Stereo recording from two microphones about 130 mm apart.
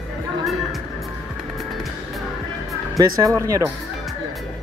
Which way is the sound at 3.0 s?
25° right (ahead or behind).